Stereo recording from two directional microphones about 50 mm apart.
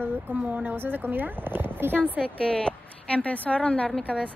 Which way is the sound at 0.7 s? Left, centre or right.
Right.